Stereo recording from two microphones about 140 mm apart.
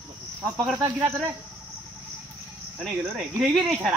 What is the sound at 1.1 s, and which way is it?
Cricket, 10° right (ahead or behind).